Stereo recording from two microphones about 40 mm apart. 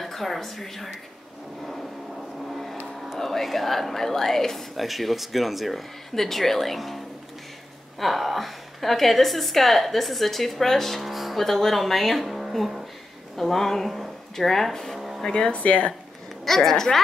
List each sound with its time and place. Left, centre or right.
0.0 s speech: centre
2.5 s vehicle: centre
3.2 s speech: centre
4.7 s a woman's voice: centre
8.0 s a woman's voice: centre
11.0 s speech: centre
13.4 s a sound: centre
14.3 s speech: centre
15.0 s a sound: centre
15.2 s speech: centre
15.5 s speech: left
16.4 s speech: centre